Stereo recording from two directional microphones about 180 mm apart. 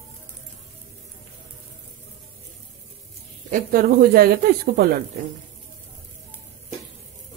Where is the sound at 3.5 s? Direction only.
55° right (ahead or behind).